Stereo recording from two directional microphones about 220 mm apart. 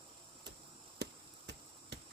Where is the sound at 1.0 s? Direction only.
50° right (ahead or behind).